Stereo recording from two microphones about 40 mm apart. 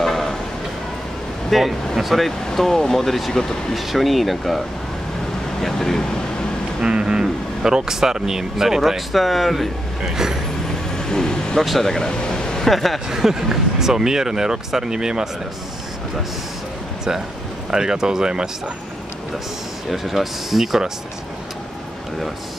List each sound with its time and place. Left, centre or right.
0.0 s vehicle: centre
1.5 s speech: centre
5.6 s speech: centre
6.8 s speech: right; by 9.7 s centre
10.1 s vehicle: centre
11.0 s vehicle: centre
11.6 s speech: centre
11.9 s air conditioning: centre
12.6 s speech: centre
13.1 s speech: centre
17.6 s speech: centre
19.9 s speech: centre